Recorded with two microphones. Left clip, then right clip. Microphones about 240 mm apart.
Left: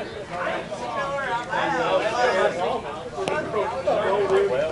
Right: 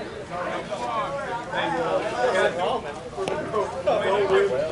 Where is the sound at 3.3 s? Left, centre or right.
Centre.